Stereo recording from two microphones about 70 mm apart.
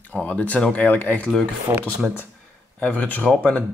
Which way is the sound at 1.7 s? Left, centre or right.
Right.